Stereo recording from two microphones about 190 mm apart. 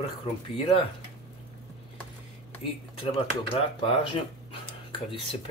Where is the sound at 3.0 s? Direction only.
30° left (ahead or behind).